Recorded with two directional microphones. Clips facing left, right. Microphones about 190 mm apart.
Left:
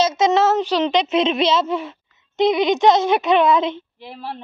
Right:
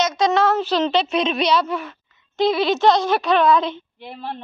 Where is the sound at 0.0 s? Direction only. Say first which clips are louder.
Left 2 dB; 25° left (ahead or behind).